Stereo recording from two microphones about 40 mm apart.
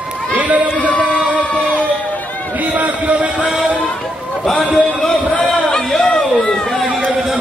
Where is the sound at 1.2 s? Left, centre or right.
Right.